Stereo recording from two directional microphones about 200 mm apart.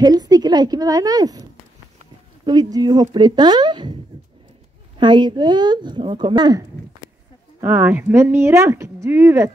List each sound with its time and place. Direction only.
0.0 s a woman's voice: 20° right (ahead or behind)
7.6 s speech: 10° right (ahead or behind)